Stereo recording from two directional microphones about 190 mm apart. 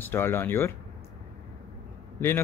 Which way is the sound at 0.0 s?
10° left (ahead or behind).